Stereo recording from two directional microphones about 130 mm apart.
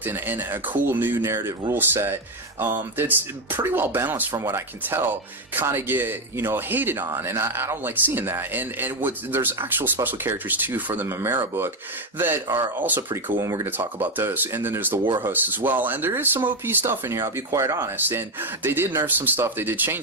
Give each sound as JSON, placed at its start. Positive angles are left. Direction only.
{"t": 0.0, "sound": "speech", "side_deg": -15}
{"t": 12.7, "sound": "speech", "side_deg": -15}
{"t": 13.4, "sound": "speech", "side_deg": -25}